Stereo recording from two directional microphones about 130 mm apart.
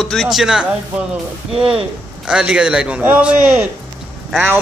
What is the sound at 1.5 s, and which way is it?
Speech, 45° right (ahead or behind).